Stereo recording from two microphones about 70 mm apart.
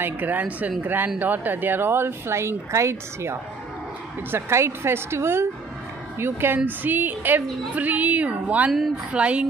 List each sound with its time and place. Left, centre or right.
0.0 s a woman's voice: right
8.7 s a woman's voice: centre
9.1 s speech: centre